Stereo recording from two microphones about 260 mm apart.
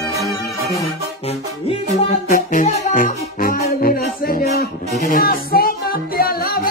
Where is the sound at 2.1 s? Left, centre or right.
Left.